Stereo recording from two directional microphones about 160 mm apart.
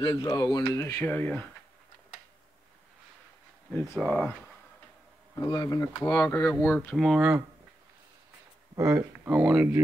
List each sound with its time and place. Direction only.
0.0 s speech: 25° left (ahead or behind); by 1.5 s 5° left (ahead or behind)
3.9 s speech: 5° right (ahead or behind)
5.5 s speech: 25° left (ahead or behind)
6.5 s speech: 10° left (ahead or behind)
7.0 s speech: centre (ahead or behind)
8.7 s speech: 15° right (ahead or behind)